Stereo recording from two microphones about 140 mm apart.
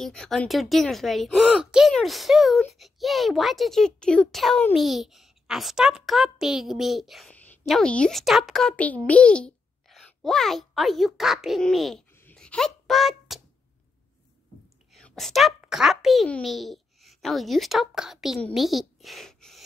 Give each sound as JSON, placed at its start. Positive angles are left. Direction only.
{"t": 0.0, "sound": "a child's voice", "side_deg": 5}
{"t": 12.1, "sound": "babbling", "side_deg": 15}
{"t": 12.4, "sound": "a sound", "side_deg": 5}
{"t": 14.9, "sound": "a child's voice", "side_deg": 0}